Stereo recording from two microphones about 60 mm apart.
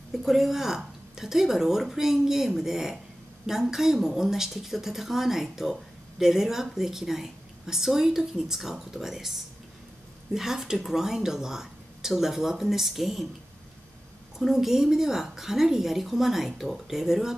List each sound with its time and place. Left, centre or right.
0.2 s a woman's voice: centre
14.4 s a woman's voice: centre